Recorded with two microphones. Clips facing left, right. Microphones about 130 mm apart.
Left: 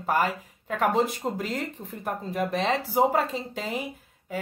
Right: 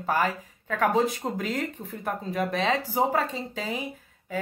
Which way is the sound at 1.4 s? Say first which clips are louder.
Right 2 dB; 35° left (ahead or behind).